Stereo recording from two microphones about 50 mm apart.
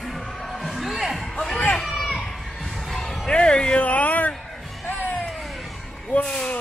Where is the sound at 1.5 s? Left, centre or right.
Left.